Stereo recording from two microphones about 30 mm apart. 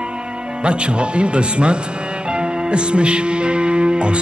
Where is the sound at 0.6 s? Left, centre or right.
Right.